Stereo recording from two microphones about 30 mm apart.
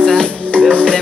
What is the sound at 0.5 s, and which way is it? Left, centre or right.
Music, left.